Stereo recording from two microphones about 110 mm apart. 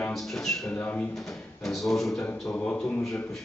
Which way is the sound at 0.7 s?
15° left (ahead or behind).